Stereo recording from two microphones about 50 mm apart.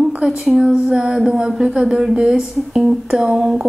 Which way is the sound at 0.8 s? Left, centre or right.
Centre.